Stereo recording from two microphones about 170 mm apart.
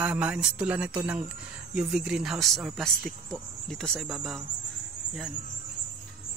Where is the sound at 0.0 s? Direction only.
10° right (ahead or behind).